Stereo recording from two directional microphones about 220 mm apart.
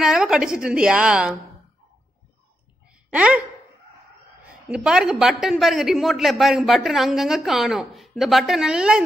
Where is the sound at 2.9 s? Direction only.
5° right (ahead or behind).